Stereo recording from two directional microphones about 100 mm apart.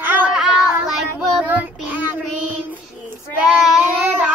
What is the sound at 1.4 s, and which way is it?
Child singing, 15° right (ahead or behind).